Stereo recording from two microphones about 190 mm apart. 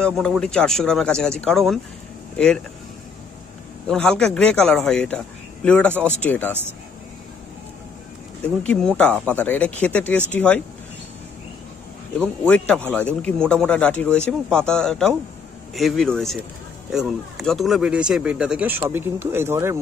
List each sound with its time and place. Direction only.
0.0 s speech: 5° left (ahead or behind)
3.9 s speech: 5° left (ahead or behind)
8.6 s speech: 5° left (ahead or behind)
12.4 s speech: 5° left (ahead or behind); by 19.8 s 15° right (ahead or behind)